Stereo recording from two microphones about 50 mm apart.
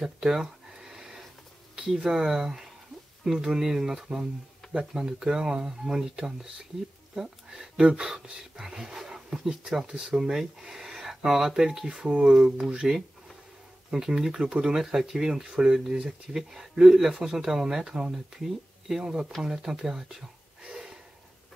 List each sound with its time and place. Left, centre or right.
0.0 s a sound: centre
2.0 s speech: centre
12.3 s speech: centre
20.6 s gasp: centre